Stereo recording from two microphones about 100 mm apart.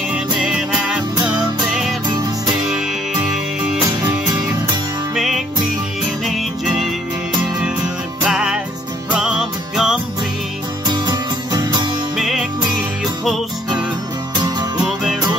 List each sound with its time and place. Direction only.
0.1 s music: 5° right (ahead or behind)
2.0 s music: 45° right (ahead or behind)
5.1 s music: 5° right (ahead or behind)
8.2 s music: 10° right (ahead or behind)
10.9 s music: 45° right (ahead or behind)
12.2 s music: 5° right (ahead or behind)